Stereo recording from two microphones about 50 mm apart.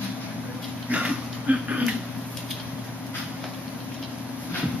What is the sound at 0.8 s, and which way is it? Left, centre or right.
Dog, right.